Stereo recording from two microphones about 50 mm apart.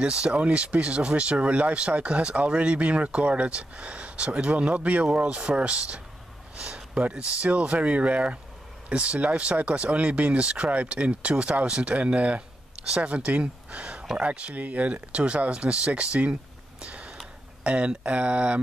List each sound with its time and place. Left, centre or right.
0.0 s speech: right
16.8 s a sound: right
17.6 s speech: right